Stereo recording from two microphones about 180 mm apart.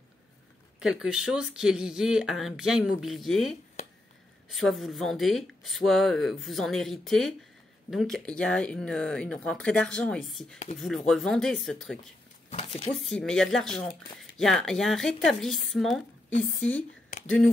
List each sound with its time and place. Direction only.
0.7 s speech: 5° right (ahead or behind)
3.8 s a sound: 40° left (ahead or behind)
4.5 s speech: centre (ahead or behind)
12.4 s speech: 35° left (ahead or behind)
12.9 s speech: centre (ahead or behind)